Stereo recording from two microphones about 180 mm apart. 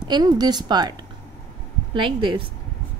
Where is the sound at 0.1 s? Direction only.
20° right (ahead or behind).